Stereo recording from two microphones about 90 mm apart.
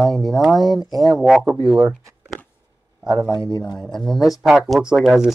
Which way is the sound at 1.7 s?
15° right (ahead or behind).